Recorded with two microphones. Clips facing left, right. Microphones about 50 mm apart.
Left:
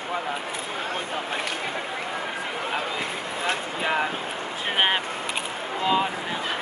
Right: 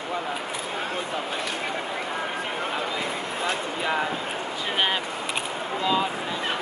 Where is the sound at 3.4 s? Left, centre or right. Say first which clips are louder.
Left 1 dB; left.